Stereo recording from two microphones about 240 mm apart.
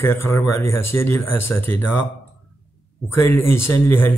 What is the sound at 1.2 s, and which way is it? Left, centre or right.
Speech, left.